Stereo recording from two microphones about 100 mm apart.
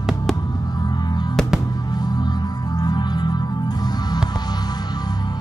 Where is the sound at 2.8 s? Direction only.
45° left (ahead or behind).